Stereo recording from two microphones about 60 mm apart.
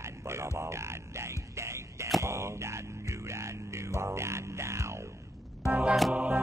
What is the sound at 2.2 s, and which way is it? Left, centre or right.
Music, right.